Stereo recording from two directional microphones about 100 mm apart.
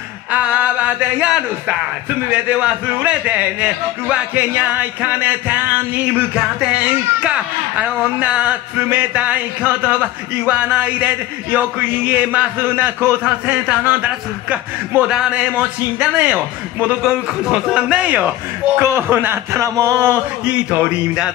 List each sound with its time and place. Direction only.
0.3 s a sound: 15° right (ahead or behind)
2.3 s speech: 15° right (ahead or behind)
18.8 s speech: 25° right (ahead or behind)
20.4 s speech: 10° right (ahead or behind)